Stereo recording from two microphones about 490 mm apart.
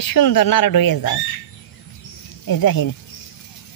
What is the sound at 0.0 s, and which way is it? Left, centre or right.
Speech, left.